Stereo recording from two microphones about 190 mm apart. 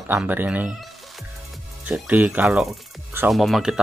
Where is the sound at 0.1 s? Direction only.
10° right (ahead or behind).